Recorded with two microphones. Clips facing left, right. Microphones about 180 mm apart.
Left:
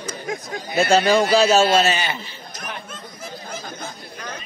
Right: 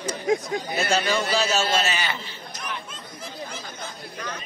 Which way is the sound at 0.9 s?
40° left (ahead or behind).